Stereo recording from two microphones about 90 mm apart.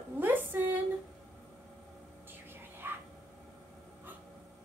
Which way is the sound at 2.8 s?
20° right (ahead or behind).